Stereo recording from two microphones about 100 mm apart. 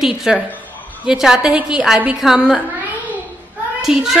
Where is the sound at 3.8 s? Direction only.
5° right (ahead or behind).